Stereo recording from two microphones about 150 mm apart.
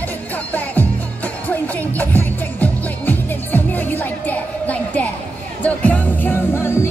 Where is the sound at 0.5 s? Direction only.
10° left (ahead or behind).